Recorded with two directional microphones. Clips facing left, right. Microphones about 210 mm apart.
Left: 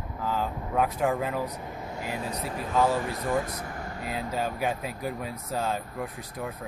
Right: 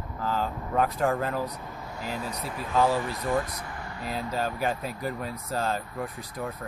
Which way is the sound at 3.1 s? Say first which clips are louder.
Even; 50° left (ahead or behind).